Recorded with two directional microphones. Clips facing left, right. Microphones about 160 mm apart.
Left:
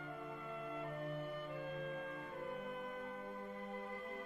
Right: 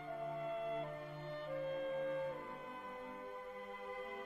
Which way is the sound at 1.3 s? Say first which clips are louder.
Right 3 dB; 30° right (ahead or behind).